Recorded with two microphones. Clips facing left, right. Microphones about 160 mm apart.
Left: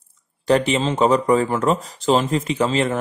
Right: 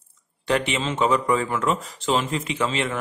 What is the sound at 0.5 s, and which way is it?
Speech, 35° left (ahead or behind).